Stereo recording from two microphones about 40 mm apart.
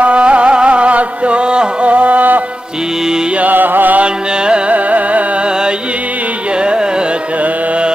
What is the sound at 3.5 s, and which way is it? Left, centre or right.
Music, right.